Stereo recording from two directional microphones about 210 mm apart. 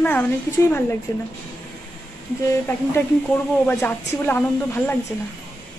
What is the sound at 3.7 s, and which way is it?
A woman's voice, 10° left (ahead or behind).